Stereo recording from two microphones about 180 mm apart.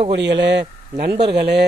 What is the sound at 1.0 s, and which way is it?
Speech, 65° right (ahead or behind).